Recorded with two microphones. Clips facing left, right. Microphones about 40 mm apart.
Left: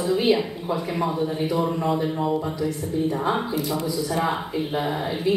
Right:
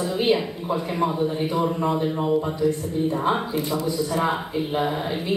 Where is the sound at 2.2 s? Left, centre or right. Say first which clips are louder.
Right 3 dB; centre.